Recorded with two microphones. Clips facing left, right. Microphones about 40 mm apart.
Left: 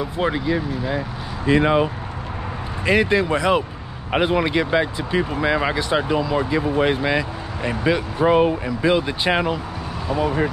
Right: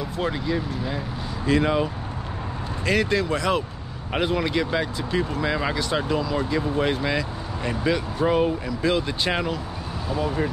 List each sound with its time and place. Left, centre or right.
0.0 s speech: centre